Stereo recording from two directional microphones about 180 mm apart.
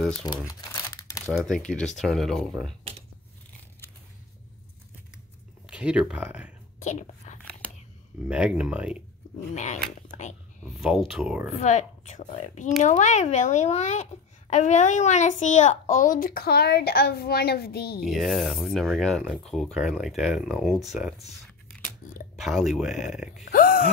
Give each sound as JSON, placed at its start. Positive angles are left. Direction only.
{"t": 0.5, "sound": "crumpling", "side_deg": 20}
{"t": 1.2, "sound": "speech", "side_deg": 0}
{"t": 5.7, "sound": "speech", "side_deg": -5}
{"t": 6.8, "sound": "whispering", "side_deg": 40}
{"t": 8.3, "sound": "speech", "side_deg": -5}
{"t": 9.6, "sound": "a woman's voice", "side_deg": 40}
{"t": 10.6, "sound": "speech", "side_deg": -5}
{"t": 11.5, "sound": "a woman's voice", "side_deg": 40}
{"t": 18.0, "sound": "speech", "side_deg": 0}
{"t": 22.3, "sound": "speech", "side_deg": 0}
{"t": 23.4, "sound": "groan", "side_deg": 50}